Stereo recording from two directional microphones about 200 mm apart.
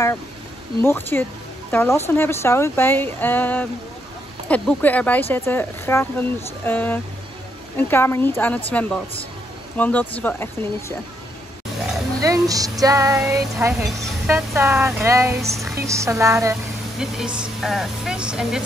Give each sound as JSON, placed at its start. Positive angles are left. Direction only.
{"t": 0.8, "sound": "speech", "side_deg": 10}
{"t": 12.2, "sound": "a woman's voice", "side_deg": -15}
{"t": 17.0, "sound": "speech", "side_deg": -5}